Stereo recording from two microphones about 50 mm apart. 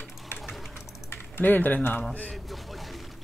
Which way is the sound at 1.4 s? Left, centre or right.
Left.